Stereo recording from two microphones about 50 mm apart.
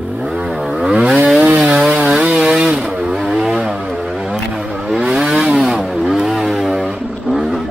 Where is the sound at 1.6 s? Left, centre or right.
Centre.